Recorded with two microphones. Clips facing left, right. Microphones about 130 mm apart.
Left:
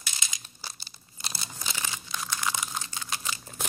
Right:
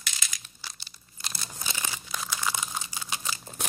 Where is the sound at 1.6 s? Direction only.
10° right (ahead or behind).